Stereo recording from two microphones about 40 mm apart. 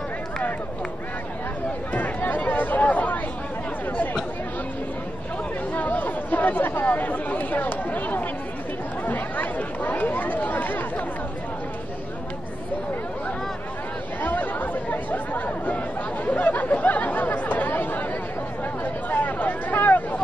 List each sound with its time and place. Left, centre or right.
2.0 s speech: left
5.8 s chatter: left
14.2 s chatter: left
19.0 s a sound: left